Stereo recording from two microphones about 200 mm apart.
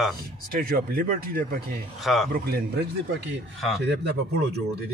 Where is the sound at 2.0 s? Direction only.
Centre (ahead or behind).